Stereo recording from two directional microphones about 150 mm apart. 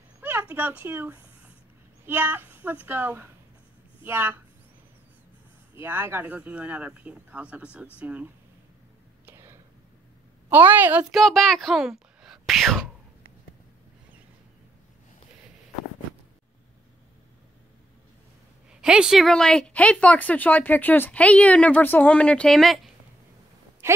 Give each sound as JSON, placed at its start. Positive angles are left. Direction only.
{"t": 0.2, "sound": "a sound", "side_deg": -10}
{"t": 2.0, "sound": "speech", "side_deg": -10}
{"t": 5.8, "sound": "speech", "side_deg": -15}
{"t": 9.2, "sound": "whispering", "side_deg": -15}
{"t": 10.5, "sound": "a woman's voice", "side_deg": -15}
{"t": 18.8, "sound": "speech", "side_deg": -5}
{"t": 23.8, "sound": "a sound", "side_deg": -15}